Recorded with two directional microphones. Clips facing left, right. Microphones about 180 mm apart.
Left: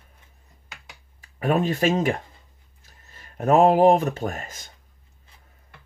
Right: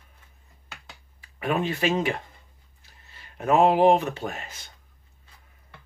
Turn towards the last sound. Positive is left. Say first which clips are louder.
# left 4 dB
turn(degrees=45)  # may be behind; listen again after turning